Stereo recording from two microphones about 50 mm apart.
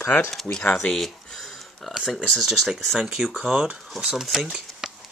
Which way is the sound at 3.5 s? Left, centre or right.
Centre.